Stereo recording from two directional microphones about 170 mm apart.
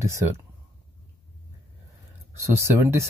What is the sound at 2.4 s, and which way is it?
Speech, 15° right (ahead or behind).